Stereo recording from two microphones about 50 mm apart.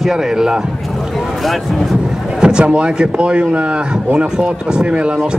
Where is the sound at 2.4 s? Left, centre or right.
Centre.